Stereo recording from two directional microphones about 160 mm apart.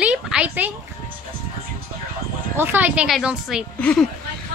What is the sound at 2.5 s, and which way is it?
A woman's voice, 10° right (ahead or behind).